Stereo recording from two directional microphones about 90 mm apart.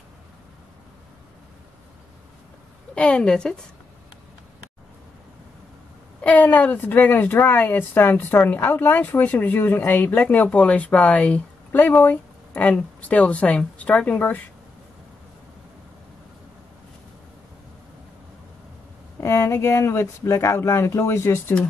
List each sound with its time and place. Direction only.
2.9 s a woman's voice: 10° left (ahead or behind)
6.2 s a woman's voice: 15° left (ahead or behind)
19.1 s speech: 30° left (ahead or behind)